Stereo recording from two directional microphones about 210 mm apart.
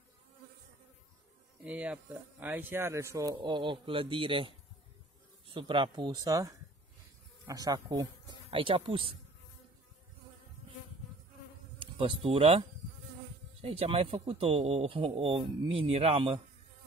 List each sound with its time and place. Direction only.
1.6 s speech: 5° right (ahead or behind); by 9.1 s 25° right (ahead or behind)
11.8 s speech: 25° right (ahead or behind)